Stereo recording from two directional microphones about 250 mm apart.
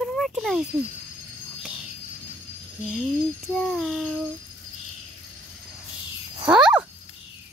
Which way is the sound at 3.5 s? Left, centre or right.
Centre.